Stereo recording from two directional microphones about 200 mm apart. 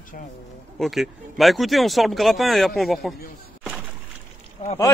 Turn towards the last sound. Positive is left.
turn(degrees=30)  # may be behind; listen again after turning